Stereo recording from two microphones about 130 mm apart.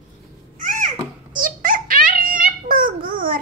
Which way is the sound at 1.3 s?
90° right.